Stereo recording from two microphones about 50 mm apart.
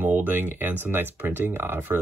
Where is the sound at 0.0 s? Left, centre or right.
Right.